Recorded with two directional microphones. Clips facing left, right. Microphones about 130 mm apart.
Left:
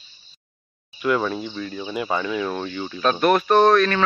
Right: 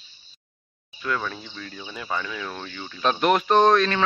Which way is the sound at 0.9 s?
15° left (ahead or behind).